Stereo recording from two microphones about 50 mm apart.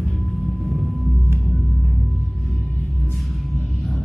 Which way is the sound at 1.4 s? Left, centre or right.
Centre.